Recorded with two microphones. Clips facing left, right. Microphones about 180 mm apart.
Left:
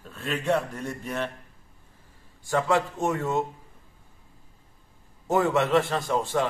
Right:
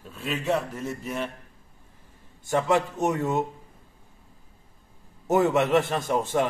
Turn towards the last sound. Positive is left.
turn(degrees=-20)  # may be behind; listen again after turning